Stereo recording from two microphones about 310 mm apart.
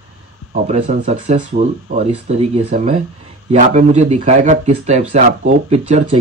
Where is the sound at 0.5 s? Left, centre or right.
Right.